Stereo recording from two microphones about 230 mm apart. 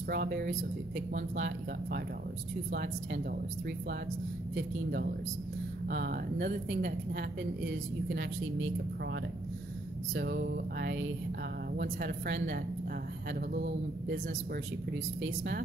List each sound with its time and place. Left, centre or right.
0.1 s a woman's voice: right
5.9 s a woman's voice: right
10.1 s a woman's voice: right
15.2 s a woman's voice: right